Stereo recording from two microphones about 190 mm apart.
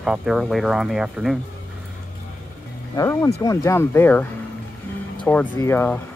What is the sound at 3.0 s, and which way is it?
Speech, 15° left (ahead or behind).